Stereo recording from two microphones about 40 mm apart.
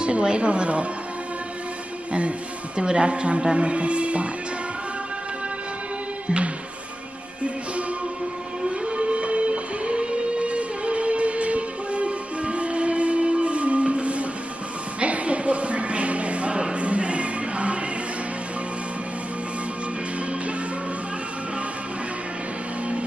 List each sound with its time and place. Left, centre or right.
0.0 s a woman's voice: right
2.1 s speech: right
6.2 s music: right
8.8 s music: right